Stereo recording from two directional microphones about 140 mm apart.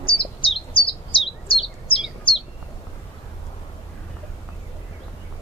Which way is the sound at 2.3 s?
40° left (ahead or behind).